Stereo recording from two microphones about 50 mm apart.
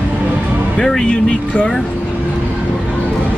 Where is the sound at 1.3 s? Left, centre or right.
Left.